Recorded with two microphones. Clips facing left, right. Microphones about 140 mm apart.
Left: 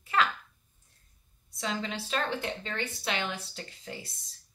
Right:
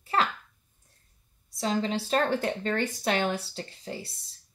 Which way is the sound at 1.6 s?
35° right (ahead or behind).